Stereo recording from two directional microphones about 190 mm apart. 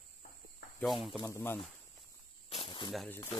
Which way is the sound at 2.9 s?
Centre (ahead or behind).